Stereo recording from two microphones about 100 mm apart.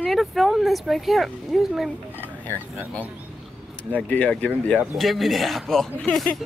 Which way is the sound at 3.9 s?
15° left (ahead or behind).